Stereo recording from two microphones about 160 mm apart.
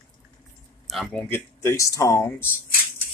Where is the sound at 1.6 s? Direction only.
15° left (ahead or behind).